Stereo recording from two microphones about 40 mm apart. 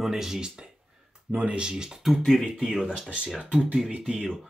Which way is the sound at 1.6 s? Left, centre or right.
Centre.